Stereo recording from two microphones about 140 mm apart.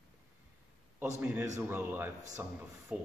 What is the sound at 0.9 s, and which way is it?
Speech, 15° right (ahead or behind).